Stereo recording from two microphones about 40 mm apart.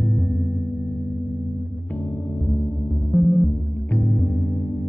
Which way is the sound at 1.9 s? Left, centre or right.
Left.